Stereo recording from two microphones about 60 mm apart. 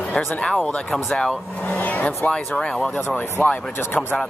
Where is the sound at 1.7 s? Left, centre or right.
Left.